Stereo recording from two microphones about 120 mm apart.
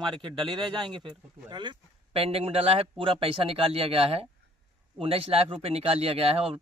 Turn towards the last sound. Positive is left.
turn(degrees=-55)  # may be behind; listen again after turning